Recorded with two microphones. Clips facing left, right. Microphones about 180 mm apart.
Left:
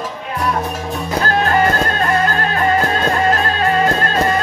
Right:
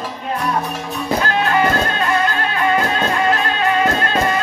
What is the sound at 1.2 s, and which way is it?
Music, 45° left (ahead or behind).